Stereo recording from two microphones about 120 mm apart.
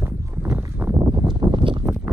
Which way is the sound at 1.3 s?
40° right (ahead or behind).